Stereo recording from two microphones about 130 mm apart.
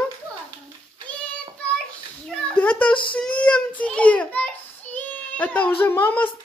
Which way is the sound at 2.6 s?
10° left (ahead or behind).